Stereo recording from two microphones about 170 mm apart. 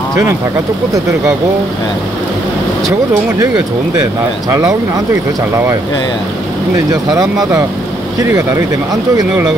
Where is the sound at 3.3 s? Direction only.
20° right (ahead or behind).